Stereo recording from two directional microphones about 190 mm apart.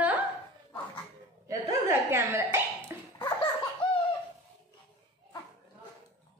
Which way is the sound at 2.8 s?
25° left (ahead or behind).